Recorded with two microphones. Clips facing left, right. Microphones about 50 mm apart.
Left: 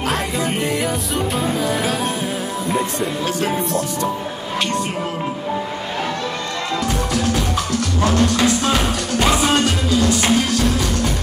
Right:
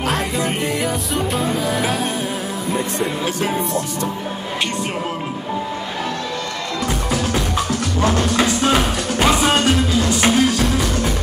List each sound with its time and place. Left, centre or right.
0.0 s music: centre
7.5 s music: centre